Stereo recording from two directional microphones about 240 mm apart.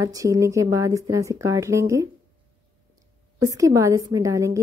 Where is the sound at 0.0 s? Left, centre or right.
Centre.